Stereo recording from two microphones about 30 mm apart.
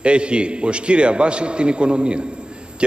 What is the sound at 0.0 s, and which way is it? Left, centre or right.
A man's voice, right.